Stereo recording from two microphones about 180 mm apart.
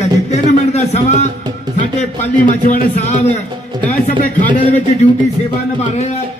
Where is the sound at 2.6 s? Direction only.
40° left (ahead or behind).